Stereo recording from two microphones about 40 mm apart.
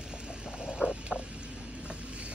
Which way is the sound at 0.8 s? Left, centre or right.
Right.